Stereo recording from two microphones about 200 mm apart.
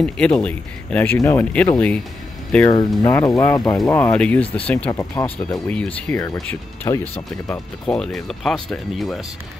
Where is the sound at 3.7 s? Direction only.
5° left (ahead or behind); by 5.6 s 20° left (ahead or behind).